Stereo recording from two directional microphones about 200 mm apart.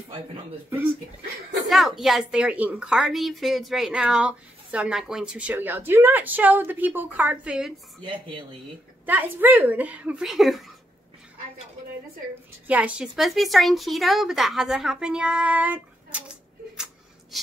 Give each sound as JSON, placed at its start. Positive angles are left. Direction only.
{"t": 1.7, "sound": "a woman's voice", "side_deg": 0}
{"t": 8.0, "sound": "speech", "side_deg": -25}
{"t": 9.0, "sound": "a woman's voice", "side_deg": -10}
{"t": 12.6, "sound": "a woman's voice", "side_deg": -5}
{"t": 16.7, "sound": "a sound", "side_deg": -5}